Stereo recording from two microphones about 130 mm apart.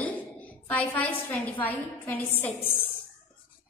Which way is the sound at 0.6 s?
10° left (ahead or behind).